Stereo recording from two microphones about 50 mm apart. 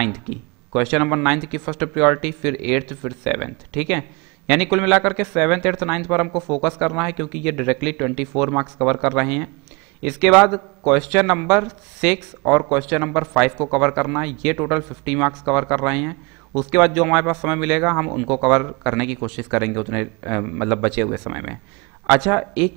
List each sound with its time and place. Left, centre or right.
0.0 s a man's voice: centre